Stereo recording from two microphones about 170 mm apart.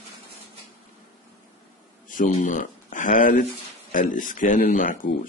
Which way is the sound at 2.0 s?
50° left (ahead or behind).